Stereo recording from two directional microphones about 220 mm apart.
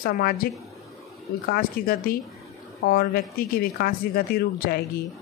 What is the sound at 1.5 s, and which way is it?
Speech, 40° left (ahead or behind).